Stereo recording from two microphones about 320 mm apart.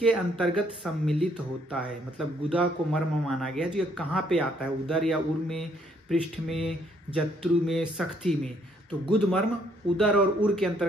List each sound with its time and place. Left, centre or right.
0.0 s speech: centre
9.9 s speech: centre